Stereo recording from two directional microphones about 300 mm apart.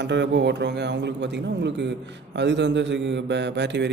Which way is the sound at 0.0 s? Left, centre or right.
Right.